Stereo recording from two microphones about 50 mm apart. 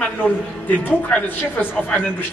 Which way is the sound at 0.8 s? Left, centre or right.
Left.